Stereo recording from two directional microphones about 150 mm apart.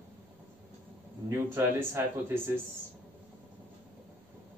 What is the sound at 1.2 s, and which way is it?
Speech, 20° right (ahead or behind).